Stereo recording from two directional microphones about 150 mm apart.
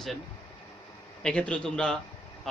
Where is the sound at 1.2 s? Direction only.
5° left (ahead or behind).